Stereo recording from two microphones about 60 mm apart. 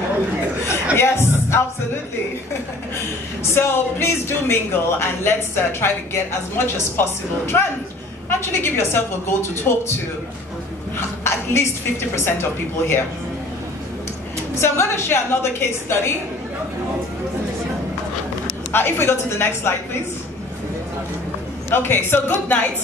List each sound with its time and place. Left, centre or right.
0.9 s music: left
3.4 s speech: left
11.0 s speech: left
14.5 s speech: left
18.7 s a woman's voice: left
21.6 s a woman's voice: left